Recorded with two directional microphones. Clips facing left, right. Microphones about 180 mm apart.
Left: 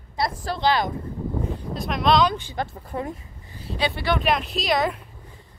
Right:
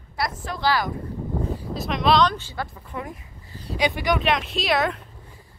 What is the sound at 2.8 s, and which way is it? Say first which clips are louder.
Speech: left 4 dB; 35° left (ahead or behind).